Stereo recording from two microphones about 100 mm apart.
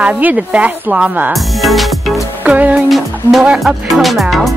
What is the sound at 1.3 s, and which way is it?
Music, centre (ahead or behind).